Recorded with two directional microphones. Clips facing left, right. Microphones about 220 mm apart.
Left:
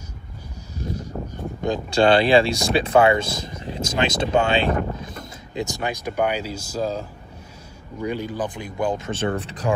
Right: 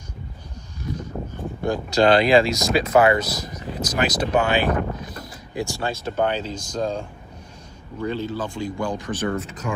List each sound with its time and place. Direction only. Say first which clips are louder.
1.6 s a man's voice: even; 25° left (ahead or behind)